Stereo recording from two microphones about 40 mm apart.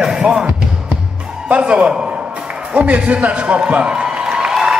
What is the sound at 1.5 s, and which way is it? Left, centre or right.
A man's voice, right.